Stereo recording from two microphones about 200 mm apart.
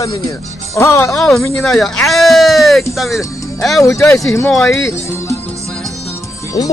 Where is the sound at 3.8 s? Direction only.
15° left (ahead or behind).